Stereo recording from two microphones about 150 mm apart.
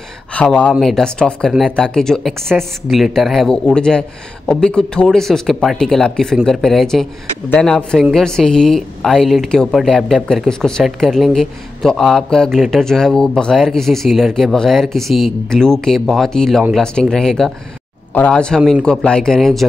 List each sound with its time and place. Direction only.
0.3 s speech: 10° left (ahead or behind)